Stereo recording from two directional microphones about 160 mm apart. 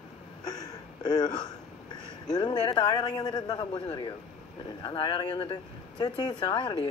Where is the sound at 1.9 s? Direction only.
25° left (ahead or behind).